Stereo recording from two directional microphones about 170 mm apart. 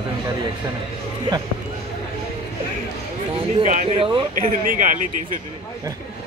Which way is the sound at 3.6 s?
40° right (ahead or behind).